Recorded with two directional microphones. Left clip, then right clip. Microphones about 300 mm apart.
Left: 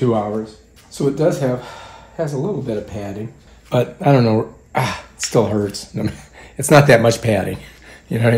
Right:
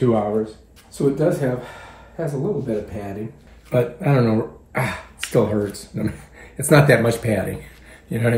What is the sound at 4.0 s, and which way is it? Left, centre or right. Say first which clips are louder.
Speech: left 5 dB; centre.